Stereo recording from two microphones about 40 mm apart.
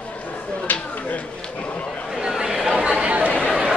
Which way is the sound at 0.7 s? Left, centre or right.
Left.